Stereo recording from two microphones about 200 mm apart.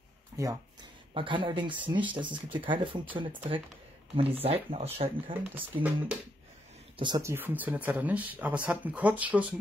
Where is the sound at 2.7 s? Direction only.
25° right (ahead or behind).